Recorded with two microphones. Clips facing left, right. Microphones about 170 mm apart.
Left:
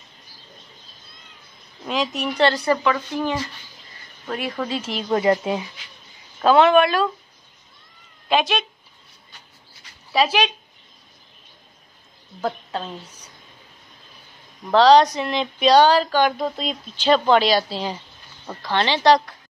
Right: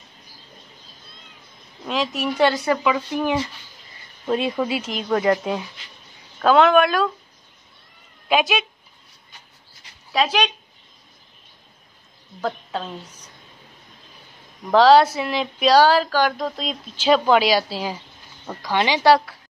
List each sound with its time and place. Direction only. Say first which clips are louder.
1.9 s speech: even; centre (ahead or behind)
4.8 s speech: left 3 dB; 5° left (ahead or behind)
8.3 s speech: right 1 dB; centre (ahead or behind)
10.1 s speech: left 1 dB; 5° left (ahead or behind)
12.4 s speech: even; centre (ahead or behind)
14.7 s speech: even; 5° right (ahead or behind)